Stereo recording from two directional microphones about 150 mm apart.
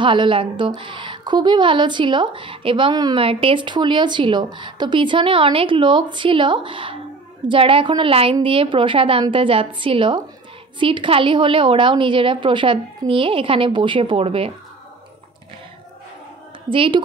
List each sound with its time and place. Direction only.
0.0 s a woman's voice: 35° right (ahead or behind)
16.7 s a woman's voice: 35° right (ahead or behind)